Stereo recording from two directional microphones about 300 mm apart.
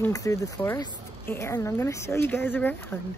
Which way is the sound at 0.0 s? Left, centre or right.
Centre.